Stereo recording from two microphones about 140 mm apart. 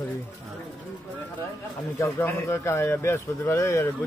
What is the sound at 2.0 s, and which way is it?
Speech, 20° left (ahead or behind).